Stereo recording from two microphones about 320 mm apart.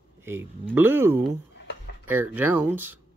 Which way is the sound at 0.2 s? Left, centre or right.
Centre.